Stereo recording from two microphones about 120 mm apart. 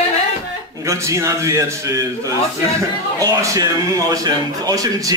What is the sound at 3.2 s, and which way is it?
Speech, 30° right (ahead or behind).